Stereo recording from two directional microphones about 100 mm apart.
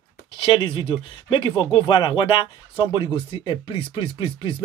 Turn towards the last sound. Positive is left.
turn(degrees=60)  # may be behind; listen again after turning